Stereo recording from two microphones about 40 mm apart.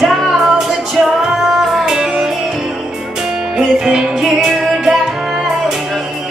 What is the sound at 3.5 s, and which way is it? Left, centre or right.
Music, centre.